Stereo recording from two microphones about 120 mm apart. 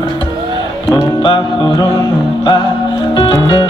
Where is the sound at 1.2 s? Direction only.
40° left (ahead or behind).